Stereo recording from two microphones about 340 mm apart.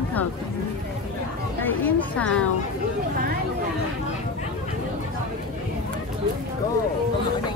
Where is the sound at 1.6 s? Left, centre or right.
Centre.